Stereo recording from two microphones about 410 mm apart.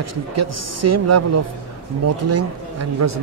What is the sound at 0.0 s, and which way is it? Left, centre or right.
A man's voice, right.